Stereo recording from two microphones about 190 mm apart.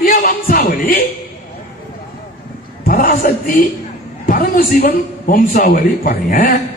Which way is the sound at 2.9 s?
50° left (ahead or behind).